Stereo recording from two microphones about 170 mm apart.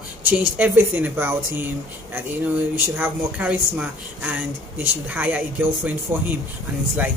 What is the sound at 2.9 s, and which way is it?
Speech, 10° right (ahead or behind).